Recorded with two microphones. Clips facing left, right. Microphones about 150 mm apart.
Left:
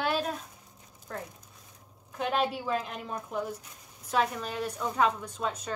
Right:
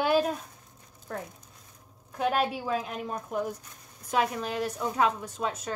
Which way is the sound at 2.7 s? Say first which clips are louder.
Right 1 dB; 5° right (ahead or behind).